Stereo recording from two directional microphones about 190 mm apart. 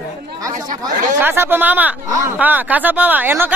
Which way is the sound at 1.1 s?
10° right (ahead or behind).